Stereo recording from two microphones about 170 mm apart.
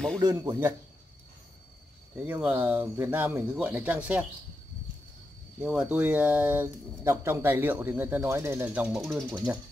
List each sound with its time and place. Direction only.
0.2 s speech: 20° right (ahead or behind)
2.1 s speech: 10° right (ahead or behind)
5.6 s speech: 5° right (ahead or behind)